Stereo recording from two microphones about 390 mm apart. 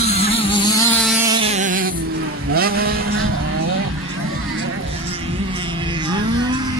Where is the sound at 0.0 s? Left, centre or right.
Centre.